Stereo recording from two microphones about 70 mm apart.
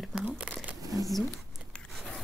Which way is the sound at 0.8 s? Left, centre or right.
Right.